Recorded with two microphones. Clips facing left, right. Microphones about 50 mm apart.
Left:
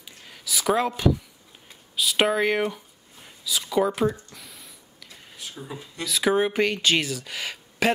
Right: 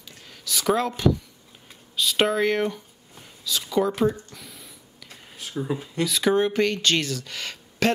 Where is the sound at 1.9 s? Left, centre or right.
Centre.